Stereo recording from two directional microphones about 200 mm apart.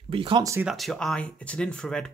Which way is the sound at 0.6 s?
Centre (ahead or behind).